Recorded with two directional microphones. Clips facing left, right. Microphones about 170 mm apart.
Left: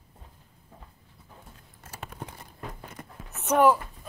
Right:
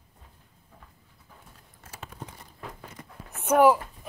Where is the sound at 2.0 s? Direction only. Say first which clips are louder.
Left 2 dB; 60° left (ahead or behind).